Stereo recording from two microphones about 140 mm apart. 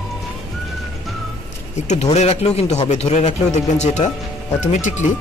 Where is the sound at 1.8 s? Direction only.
50° left (ahead or behind).